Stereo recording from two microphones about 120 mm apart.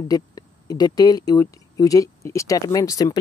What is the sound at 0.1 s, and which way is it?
Speech, 35° left (ahead or behind).